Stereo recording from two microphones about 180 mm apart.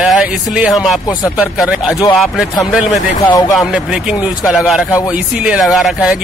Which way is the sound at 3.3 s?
20° left (ahead or behind).